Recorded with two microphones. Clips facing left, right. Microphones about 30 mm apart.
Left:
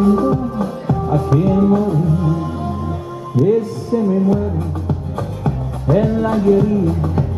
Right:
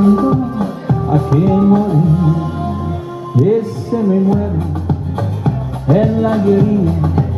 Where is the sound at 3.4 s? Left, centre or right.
Centre.